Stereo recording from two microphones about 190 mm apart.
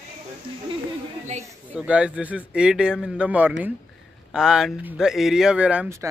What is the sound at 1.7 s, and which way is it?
Speech, 5° right (ahead or behind).